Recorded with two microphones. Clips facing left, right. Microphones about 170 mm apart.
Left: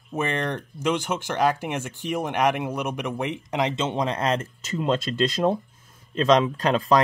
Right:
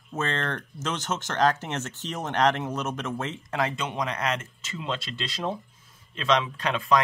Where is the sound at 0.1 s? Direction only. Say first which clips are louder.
Left 3 dB; 15° left (ahead or behind).